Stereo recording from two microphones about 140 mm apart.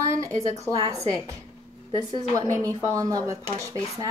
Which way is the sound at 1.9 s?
30° right (ahead or behind).